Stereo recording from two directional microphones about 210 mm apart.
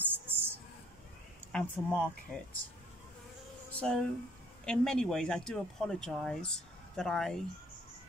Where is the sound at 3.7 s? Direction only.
5° left (ahead or behind).